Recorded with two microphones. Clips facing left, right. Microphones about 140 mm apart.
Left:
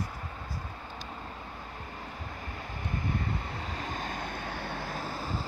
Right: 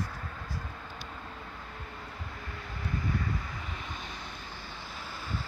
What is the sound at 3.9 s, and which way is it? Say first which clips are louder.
Vehicle: left 6 dB; 50° left (ahead or behind).